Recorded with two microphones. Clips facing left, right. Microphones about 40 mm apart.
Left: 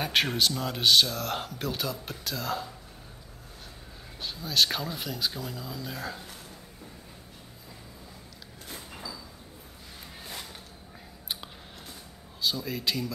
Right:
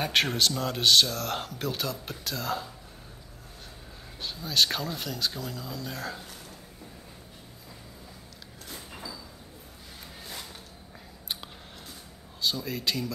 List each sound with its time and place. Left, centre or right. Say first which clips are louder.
0.0 s speech: right 1 dB; centre
4.2 s speech: even; centre
8.6 s sliding door: even; centre
12.4 s speech: even; centre